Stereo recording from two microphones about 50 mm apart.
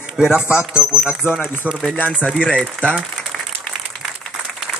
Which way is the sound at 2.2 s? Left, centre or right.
Left.